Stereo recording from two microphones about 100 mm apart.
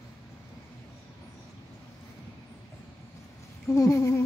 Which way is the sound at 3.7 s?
30° left (ahead or behind).